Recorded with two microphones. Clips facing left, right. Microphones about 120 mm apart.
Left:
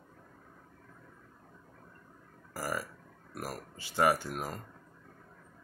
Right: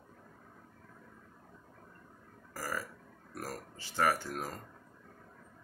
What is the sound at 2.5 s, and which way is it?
Speech, 15° left (ahead or behind).